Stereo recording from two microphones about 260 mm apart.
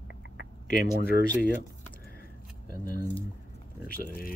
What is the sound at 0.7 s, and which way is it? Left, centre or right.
Speech, right.